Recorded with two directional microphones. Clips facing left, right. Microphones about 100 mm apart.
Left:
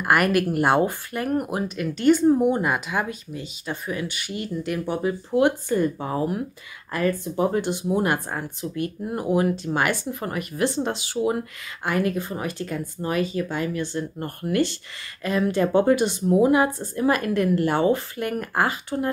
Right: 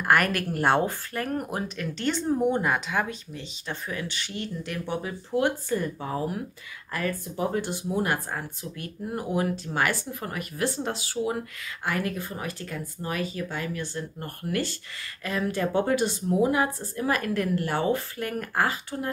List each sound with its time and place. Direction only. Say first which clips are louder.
0.0 s speech: left 3 dB; 10° left (ahead or behind)
6.9 s a woman's voice: left 6 dB; 20° left (ahead or behind)